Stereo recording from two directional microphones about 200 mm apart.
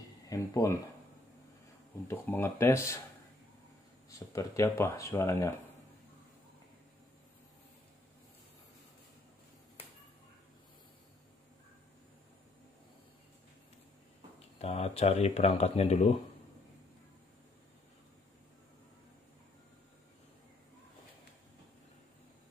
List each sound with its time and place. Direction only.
0.3 s speech: 15° left (ahead or behind)
2.0 s speech: 10° left (ahead or behind)
4.1 s speech: 15° left (ahead or behind)
14.6 s speech: 30° left (ahead or behind)